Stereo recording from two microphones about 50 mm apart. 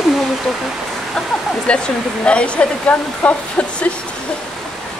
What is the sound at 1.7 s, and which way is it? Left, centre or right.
Speech, centre.